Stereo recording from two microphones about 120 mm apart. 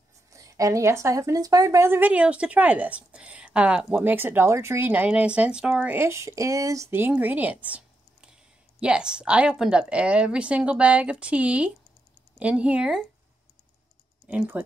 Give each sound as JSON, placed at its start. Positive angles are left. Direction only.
{"t": 0.3, "sound": "speech", "side_deg": -30}
{"t": 14.2, "sound": "speech", "side_deg": -10}